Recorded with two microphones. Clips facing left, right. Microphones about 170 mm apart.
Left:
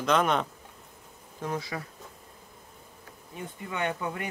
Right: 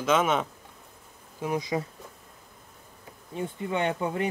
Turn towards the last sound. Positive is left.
turn(degrees=-25)  # may be behind; listen again after turning